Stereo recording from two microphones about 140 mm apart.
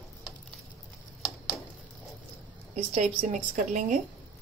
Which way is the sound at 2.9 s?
60° right (ahead or behind).